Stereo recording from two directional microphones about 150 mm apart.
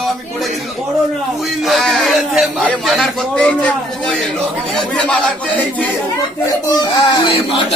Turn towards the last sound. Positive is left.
turn(degrees=30)  # may be behind; listen again after turning